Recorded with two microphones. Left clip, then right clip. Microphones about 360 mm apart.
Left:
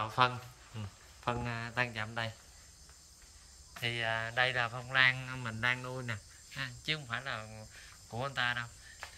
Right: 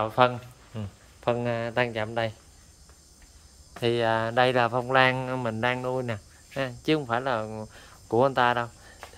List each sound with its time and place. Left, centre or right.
0.0 s speech: centre
3.8 s speech: centre